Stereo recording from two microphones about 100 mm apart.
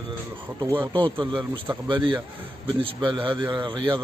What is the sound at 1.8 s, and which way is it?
A man's voice, 50° right (ahead or behind).